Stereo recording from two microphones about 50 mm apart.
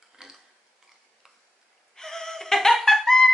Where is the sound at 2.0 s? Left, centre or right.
Centre.